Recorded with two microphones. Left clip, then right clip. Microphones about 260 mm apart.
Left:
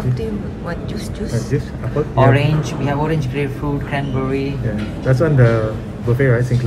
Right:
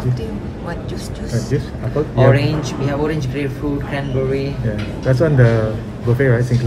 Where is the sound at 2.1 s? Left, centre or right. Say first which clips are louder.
Even; right.